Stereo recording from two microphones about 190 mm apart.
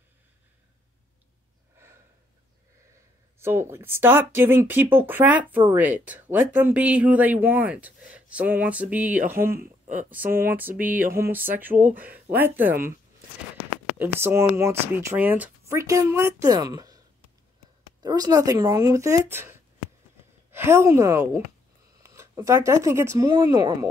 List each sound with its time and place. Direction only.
3.3 s speech: 15° right (ahead or behind)
11.2 s a sound: 50° right (ahead or behind)
11.5 s speech: 10° right (ahead or behind)
13.9 s speech: 10° right (ahead or behind)
18.0 s speech: 20° right (ahead or behind)
20.5 s speech: 15° right (ahead or behind)